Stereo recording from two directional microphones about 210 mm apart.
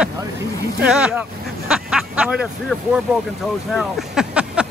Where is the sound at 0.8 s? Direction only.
5° right (ahead or behind).